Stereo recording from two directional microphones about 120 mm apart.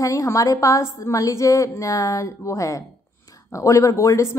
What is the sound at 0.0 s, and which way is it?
Speech, 25° left (ahead or behind).